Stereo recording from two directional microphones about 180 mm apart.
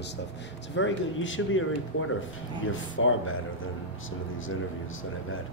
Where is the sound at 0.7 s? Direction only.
90° left.